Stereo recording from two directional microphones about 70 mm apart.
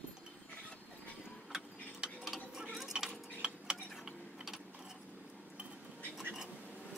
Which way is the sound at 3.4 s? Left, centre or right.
Centre.